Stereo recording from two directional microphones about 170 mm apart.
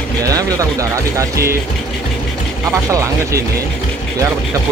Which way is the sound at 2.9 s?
20° right (ahead or behind).